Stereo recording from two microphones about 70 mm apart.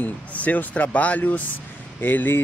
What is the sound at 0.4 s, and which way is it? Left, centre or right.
Speech, left.